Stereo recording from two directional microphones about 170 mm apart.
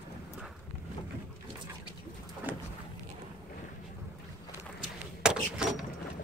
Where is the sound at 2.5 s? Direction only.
10° right (ahead or behind).